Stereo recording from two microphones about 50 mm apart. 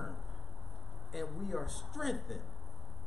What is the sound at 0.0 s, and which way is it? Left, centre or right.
Chop, centre.